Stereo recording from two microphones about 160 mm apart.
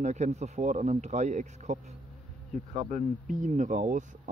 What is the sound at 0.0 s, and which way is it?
Speech, 45° right (ahead or behind).